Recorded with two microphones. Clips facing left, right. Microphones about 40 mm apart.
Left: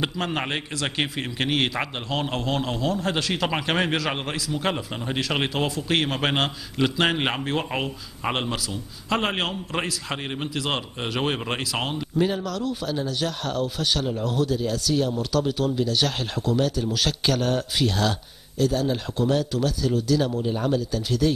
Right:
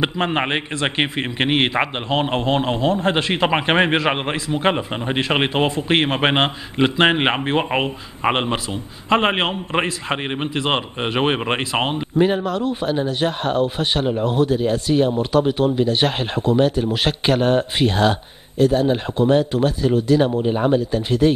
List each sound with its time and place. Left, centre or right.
0.0 s a man's voice: right